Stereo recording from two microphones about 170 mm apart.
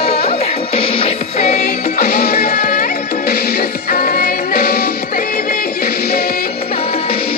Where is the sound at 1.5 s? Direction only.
65° left (ahead or behind).